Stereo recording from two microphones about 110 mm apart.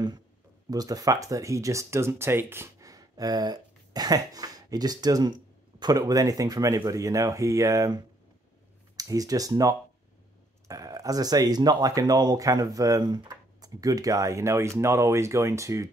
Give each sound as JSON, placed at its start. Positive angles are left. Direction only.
{"t": 0.7, "sound": "speech", "side_deg": -35}